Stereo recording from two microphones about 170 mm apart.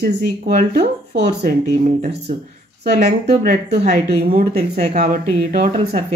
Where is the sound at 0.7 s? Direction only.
75° right (ahead or behind).